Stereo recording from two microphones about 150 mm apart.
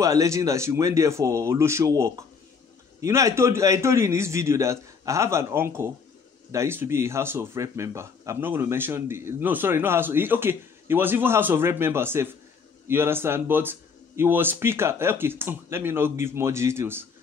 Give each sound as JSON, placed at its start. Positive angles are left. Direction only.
{"t": 0.0, "sound": "a man's voice", "side_deg": -20}